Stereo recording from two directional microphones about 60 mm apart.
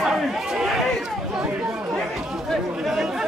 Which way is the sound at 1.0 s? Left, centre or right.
Centre.